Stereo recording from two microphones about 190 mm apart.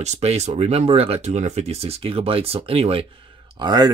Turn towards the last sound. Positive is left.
turn(degrees=-20)  # may be behind; listen again after turning